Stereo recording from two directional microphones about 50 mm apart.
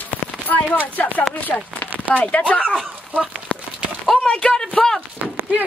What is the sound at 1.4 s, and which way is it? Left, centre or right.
Speech, left.